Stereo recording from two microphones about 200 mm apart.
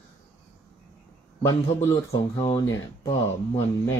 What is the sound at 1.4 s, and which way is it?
Speech, 15° left (ahead or behind).